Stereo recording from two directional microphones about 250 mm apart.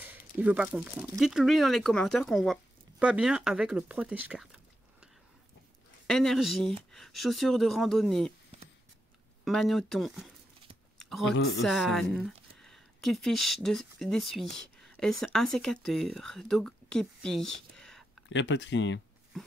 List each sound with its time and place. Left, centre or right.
0.1 s speech: centre
6.0 s speech: centre
9.4 s speech: centre
11.0 s a sound: centre
11.6 s speech: centre
18.3 s speech: left